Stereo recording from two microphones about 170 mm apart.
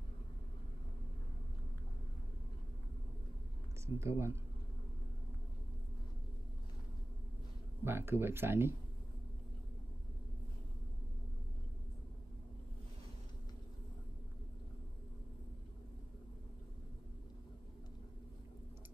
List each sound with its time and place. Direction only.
3.8 s speech: 15° right (ahead or behind)
7.8 s speech: 15° right (ahead or behind)